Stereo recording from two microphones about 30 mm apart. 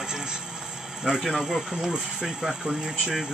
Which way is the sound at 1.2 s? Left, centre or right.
Centre.